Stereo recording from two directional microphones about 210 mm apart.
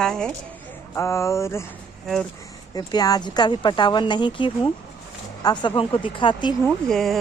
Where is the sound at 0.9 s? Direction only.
15° left (ahead or behind).